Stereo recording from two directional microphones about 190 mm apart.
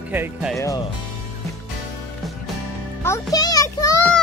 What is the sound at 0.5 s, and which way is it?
Speech, 15° left (ahead or behind).